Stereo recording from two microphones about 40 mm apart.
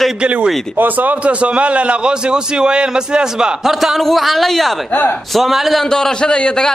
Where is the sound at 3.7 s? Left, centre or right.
Centre.